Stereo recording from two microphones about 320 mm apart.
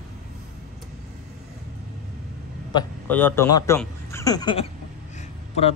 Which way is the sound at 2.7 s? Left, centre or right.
Centre.